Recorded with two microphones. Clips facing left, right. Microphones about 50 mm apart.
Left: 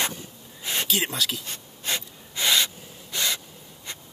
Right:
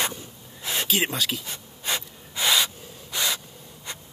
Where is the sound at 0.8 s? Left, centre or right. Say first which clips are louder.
Right 2 dB; right.